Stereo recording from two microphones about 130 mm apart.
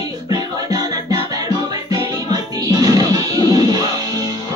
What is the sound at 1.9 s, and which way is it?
Music, 30° right (ahead or behind).